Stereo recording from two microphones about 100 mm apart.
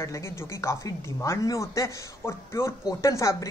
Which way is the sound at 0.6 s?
35° left (ahead or behind).